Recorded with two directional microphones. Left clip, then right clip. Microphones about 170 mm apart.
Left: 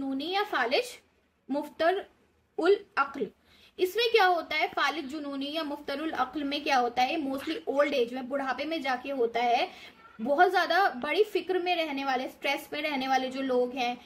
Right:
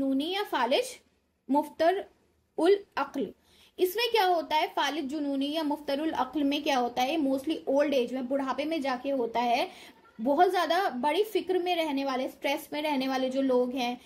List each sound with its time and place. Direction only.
0.2 s a woman's voice: 20° right (ahead or behind)